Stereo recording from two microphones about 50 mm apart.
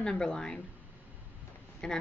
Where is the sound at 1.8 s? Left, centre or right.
Centre.